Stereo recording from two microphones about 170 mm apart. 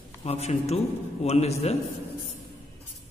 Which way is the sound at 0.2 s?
40° left (ahead or behind).